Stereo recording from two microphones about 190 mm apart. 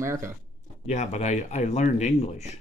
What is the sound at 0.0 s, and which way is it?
Speech, 15° right (ahead or behind).